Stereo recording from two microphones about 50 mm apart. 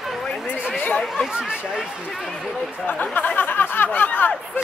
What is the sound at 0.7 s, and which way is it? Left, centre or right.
Chatter, left.